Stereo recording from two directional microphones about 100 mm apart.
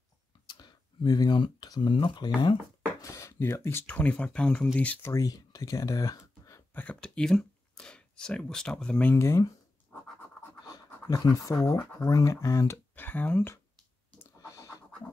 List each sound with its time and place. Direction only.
0.5 s speech: 45° left (ahead or behind)
3.0 s speech: 30° left (ahead or behind); by 4.6 s 10° left (ahead or behind)
5.0 s speech: 35° left (ahead or behind)
6.7 s speech: 15° left (ahead or behind)
9.1 s speech: 25° left (ahead or behind)
10.7 s speech: 35° left (ahead or behind)
12.7 s speech: 20° left (ahead or behind)